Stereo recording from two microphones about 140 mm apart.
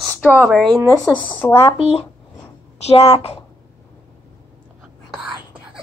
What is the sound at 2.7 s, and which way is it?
Speech, 50° left (ahead or behind).